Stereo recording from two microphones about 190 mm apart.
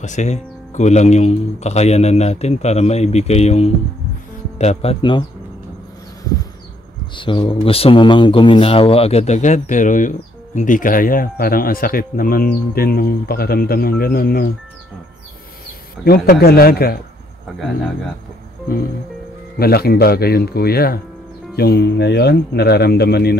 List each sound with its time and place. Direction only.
0.0 s speech: 40° left (ahead or behind)
7.2 s speech: 25° left (ahead or behind); by 14.5 s 50° left (ahead or behind)
16.0 s speech: 55° left (ahead or behind)
19.6 s speech: 55° left (ahead or behind)